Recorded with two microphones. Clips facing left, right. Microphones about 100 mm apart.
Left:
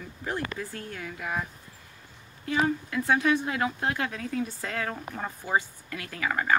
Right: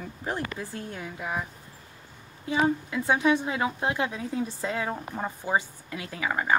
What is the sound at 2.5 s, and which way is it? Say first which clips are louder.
Speech: right 2 dB; 20° right (ahead or behind).